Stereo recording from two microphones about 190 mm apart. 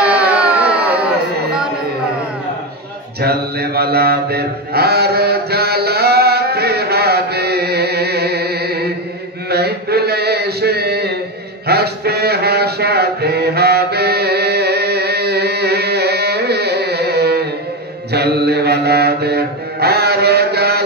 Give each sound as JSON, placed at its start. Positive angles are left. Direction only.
{"t": 0.1, "sound": "music", "side_deg": -5}
{"t": 3.2, "sound": "mantra", "side_deg": -55}
{"t": 11.6, "sound": "a sound", "side_deg": -55}
{"t": 18.1, "sound": "mantra", "side_deg": -60}